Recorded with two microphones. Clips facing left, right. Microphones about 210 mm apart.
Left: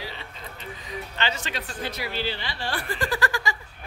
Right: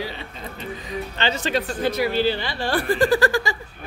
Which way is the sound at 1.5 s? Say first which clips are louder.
Right 10 dB; 50° right (ahead or behind).